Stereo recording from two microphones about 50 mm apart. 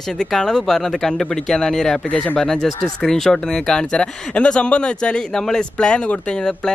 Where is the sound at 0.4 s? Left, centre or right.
Centre.